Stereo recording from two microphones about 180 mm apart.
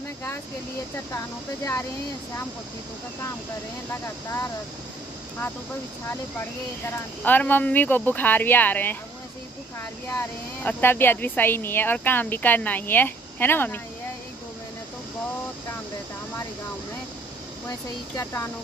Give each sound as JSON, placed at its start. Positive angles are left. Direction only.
{"t": 1.1, "sound": "speech", "side_deg": 15}
{"t": 7.2, "sound": "speech", "side_deg": 10}
{"t": 10.6, "sound": "speech", "side_deg": 10}
{"t": 18.1, "sound": "speech", "side_deg": 15}